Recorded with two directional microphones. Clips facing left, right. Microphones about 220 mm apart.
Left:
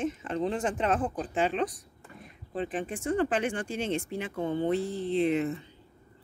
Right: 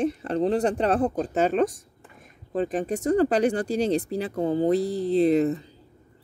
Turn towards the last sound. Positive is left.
turn(degrees=-40)  # may be behind; listen again after turning